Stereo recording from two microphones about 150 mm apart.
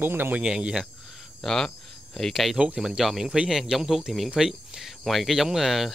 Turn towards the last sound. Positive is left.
turn(degrees=0)  # may be behind; listen again after turning